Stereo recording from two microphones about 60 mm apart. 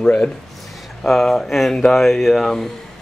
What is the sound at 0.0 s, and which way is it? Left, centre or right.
Speech, centre.